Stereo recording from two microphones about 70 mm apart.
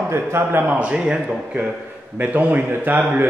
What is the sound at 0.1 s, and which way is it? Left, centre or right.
Speech, right.